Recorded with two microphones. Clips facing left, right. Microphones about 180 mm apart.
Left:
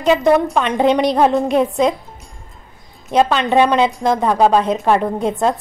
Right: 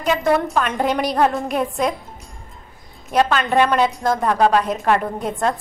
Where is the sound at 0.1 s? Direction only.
20° left (ahead or behind).